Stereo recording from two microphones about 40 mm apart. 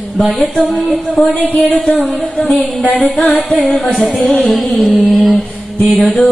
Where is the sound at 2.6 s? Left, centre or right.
Left.